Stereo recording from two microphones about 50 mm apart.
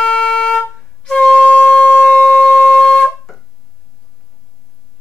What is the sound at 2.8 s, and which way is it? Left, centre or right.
Wind instrument, centre.